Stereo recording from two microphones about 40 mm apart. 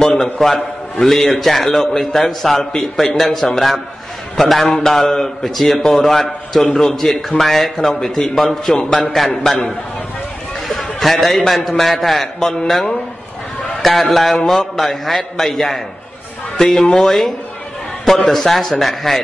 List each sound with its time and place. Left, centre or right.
0.2 s a man's voice: centre
9.3 s a man's voice: centre
10.7 s a man's voice: centre
13.8 s a man's voice: centre
18.3 s a man's voice: centre